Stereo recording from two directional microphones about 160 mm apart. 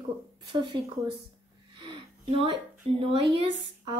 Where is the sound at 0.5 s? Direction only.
30° right (ahead or behind).